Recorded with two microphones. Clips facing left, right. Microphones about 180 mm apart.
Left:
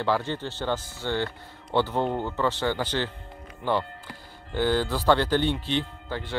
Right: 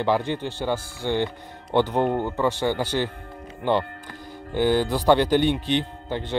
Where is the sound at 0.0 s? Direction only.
15° right (ahead or behind).